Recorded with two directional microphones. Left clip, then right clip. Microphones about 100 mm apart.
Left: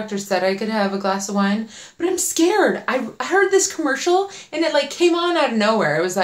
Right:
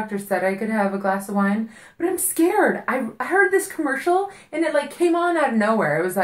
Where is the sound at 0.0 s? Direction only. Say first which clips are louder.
Left 2 dB; centre (ahead or behind).